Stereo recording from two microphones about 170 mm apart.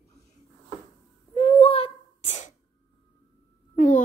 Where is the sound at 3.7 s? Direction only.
45° left (ahead or behind).